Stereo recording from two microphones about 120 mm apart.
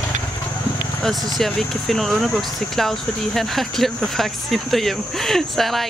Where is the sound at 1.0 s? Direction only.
Centre (ahead or behind).